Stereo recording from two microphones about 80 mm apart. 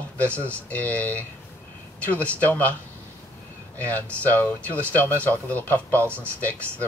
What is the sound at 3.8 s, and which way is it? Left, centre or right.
Speech, left.